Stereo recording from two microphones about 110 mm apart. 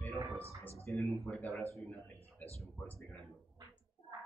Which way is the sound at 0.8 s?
25° left (ahead or behind).